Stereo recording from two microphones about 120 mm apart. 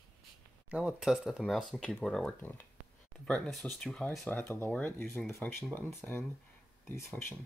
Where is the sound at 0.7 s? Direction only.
5° right (ahead or behind); by 7.4 s 20° left (ahead or behind).